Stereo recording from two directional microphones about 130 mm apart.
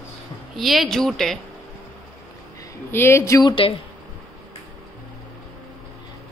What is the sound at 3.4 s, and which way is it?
Speech, 45° left (ahead or behind).